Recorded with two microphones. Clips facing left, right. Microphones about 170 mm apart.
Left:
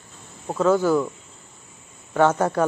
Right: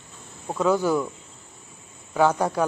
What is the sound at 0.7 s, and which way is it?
Speech, 15° right (ahead or behind).